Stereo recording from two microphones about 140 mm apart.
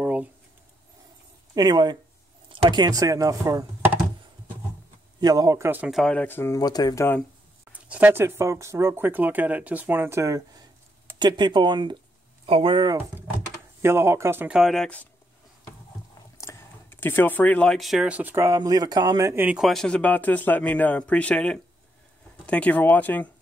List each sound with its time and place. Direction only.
0.0 s a sound: 10° right (ahead or behind)
1.5 s speech: 30° right (ahead or behind)
5.2 s speech: 25° right (ahead or behind)
5.9 s speech: centre (ahead or behind)
6.1 s speech: 15° left (ahead or behind)
6.6 s speech: 30° left (ahead or behind)
7.9 s speech: 15° right (ahead or behind); by 12.9 s 35° right (ahead or behind)
12.9 s typing: 10° right (ahead or behind)
13.8 s speech: 20° right (ahead or behind)
14.6 s speech: 5° left (ahead or behind)
16.3 s speech: 15° left (ahead or behind); by 19.6 s 15° right (ahead or behind)
19.6 s speech: 5° left (ahead or behind)